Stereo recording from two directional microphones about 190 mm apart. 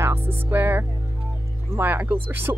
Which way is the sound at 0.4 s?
10° right (ahead or behind).